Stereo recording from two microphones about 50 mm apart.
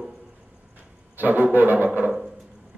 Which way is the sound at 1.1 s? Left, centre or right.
Right.